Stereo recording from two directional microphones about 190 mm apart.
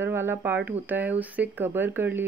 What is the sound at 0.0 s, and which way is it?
Speech, 10° right (ahead or behind).